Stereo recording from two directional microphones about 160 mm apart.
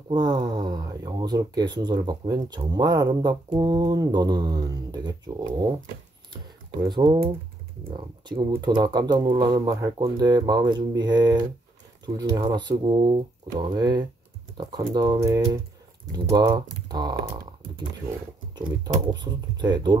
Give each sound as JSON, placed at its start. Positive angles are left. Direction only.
{"t": 0.1, "sound": "speech", "side_deg": -25}
{"t": 19.1, "sound": "speech", "side_deg": -25}